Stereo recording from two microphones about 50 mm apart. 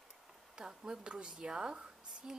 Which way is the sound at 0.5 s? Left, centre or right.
Centre.